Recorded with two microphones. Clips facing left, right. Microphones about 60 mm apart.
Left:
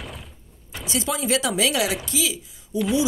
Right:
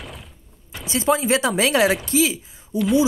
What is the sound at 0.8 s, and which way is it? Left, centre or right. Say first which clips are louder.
A woman's voice: right 5 dB; right.